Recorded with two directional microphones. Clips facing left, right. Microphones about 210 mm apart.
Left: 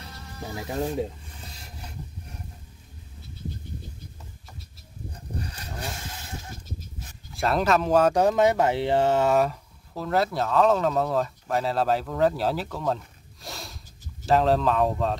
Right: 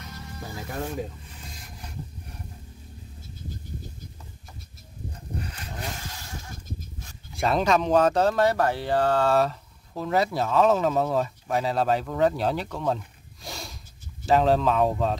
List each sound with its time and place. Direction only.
0.4 s speech: 20° left (ahead or behind)
7.3 s speech: centre (ahead or behind)
9.9 s speech: centre (ahead or behind)